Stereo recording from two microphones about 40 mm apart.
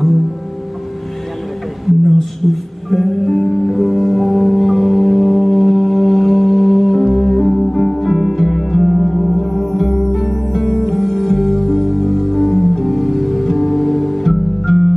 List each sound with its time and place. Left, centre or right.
2.0 s music: centre